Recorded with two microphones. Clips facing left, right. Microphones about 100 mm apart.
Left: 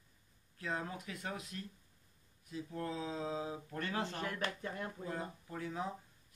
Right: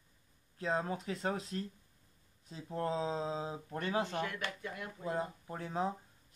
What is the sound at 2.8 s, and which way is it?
Speech, 30° right (ahead or behind).